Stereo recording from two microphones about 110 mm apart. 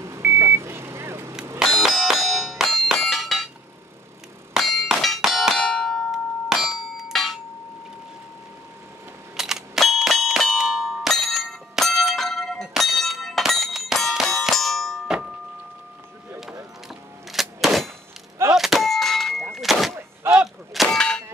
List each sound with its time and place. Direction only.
0.0 s vehicle: 25° right (ahead or behind)
1.6 s bell: centre (ahead or behind)
4.6 s clang: centre (ahead or behind)
9.4 s a sound: centre (ahead or behind)
16.8 s clang: centre (ahead or behind)
18.5 s a sound: centre (ahead or behind)
19.5 s thunk: centre (ahead or behind)
20.2 s clang: 5° right (ahead or behind)